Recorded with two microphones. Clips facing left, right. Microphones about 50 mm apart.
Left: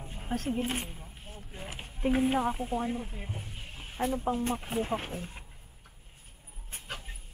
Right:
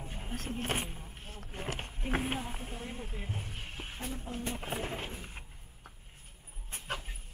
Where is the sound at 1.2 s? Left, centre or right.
Right.